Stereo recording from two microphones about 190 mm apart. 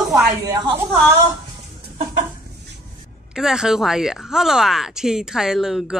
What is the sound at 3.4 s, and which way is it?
Speech, centre (ahead or behind).